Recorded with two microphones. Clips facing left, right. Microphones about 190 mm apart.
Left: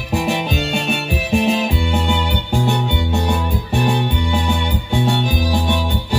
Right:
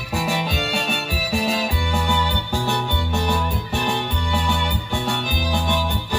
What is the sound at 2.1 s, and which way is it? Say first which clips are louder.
Music: left 3 dB; 15° left (ahead or behind).